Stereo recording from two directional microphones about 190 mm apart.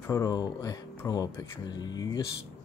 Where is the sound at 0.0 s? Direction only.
15° left (ahead or behind).